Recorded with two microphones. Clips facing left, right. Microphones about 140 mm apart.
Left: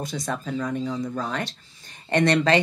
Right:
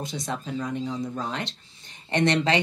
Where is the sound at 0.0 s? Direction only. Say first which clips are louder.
Left 2 dB; 20° right (ahead or behind).